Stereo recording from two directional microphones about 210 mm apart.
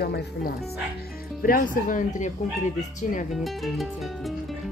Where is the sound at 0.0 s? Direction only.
50° left (ahead or behind).